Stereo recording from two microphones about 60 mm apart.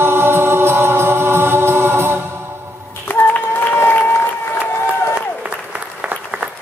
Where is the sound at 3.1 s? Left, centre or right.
Left.